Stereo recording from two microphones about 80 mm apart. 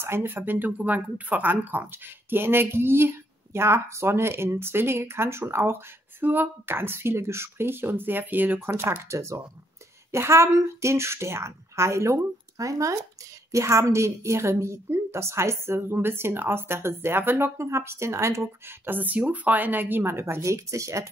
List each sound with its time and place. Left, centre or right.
0.0 s a woman's voice: right
18.9 s speech: right